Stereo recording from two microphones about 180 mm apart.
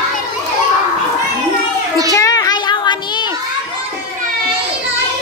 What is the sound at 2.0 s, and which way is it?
Child singing, 20° left (ahead or behind).